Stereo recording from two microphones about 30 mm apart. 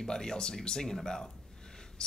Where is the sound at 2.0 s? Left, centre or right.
Left.